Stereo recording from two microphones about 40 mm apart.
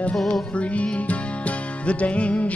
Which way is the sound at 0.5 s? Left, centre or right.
Left.